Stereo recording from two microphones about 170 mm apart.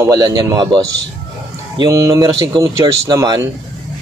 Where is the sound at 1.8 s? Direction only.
20° right (ahead or behind).